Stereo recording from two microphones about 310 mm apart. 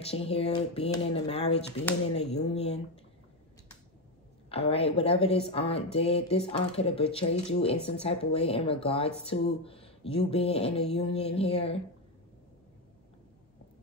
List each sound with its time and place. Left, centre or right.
0.0 s speech: centre
4.5 s speech: centre